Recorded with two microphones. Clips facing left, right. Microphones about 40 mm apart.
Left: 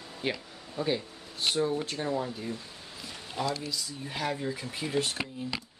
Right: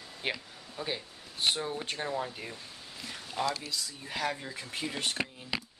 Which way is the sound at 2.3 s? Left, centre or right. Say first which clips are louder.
Left 6 dB; right.